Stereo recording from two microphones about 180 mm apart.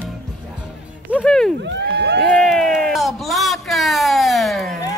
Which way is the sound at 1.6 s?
70° right (ahead or behind).